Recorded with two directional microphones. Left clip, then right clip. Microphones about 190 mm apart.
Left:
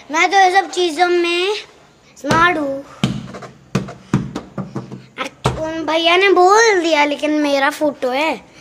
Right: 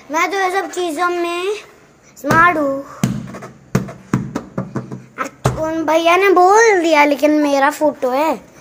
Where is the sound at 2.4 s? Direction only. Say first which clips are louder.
Right 3 dB; 10° right (ahead or behind).